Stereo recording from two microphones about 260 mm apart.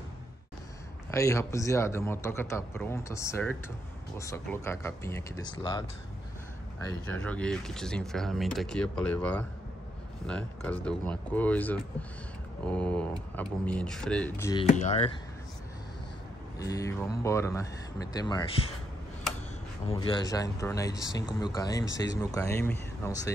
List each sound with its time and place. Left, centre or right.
1.1 s a man's voice: centre
14.7 s speech: left
16.5 s a man's voice: centre
19.9 s a man's voice: centre